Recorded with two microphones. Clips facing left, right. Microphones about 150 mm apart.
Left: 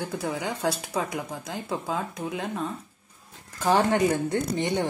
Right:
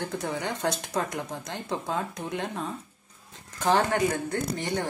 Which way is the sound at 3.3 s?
5° left (ahead or behind).